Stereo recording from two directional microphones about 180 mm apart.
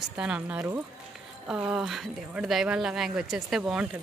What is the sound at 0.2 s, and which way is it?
Speech, 5° right (ahead or behind).